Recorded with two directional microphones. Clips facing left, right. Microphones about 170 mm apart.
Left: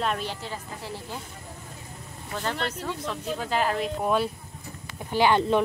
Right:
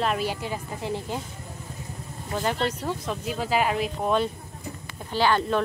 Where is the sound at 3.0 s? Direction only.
5° right (ahead or behind).